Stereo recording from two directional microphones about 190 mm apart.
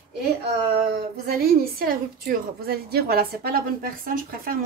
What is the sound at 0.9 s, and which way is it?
A woman's voice, 55° right (ahead or behind).